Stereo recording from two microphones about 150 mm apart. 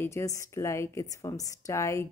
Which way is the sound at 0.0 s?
20° left (ahead or behind).